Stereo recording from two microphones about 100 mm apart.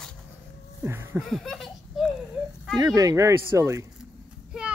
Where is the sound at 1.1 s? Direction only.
Centre (ahead or behind).